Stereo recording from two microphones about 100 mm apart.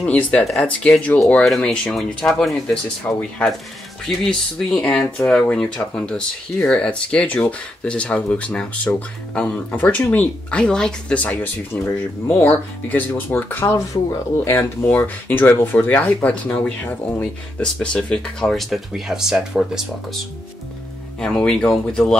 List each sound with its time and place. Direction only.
0.0 s speech: 15° left (ahead or behind)
11.7 s speech: 20° left (ahead or behind)
14.9 s speech: 20° left (ahead or behind); by 19.8 s 5° right (ahead or behind)
21.2 s speech: 5° left (ahead or behind)